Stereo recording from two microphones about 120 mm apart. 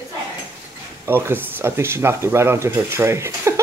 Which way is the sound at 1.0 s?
20° right (ahead or behind).